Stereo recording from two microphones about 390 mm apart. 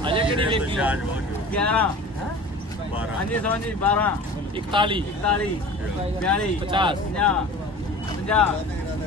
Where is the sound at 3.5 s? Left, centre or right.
Centre.